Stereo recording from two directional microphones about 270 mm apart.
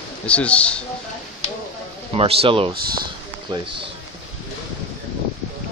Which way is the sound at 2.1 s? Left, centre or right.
Right.